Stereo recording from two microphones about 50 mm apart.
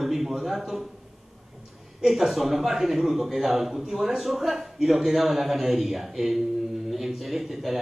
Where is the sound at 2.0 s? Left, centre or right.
Centre.